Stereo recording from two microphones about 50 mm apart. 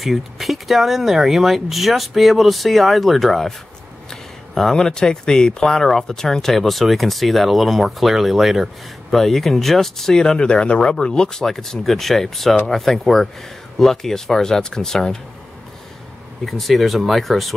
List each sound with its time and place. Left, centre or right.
0.0 s speech: centre
16.4 s speech: centre